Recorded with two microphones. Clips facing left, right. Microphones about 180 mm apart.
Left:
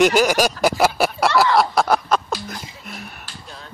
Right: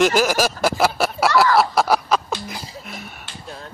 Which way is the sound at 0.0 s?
Centre (ahead or behind).